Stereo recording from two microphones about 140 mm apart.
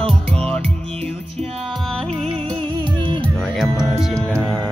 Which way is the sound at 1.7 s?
5° left (ahead or behind).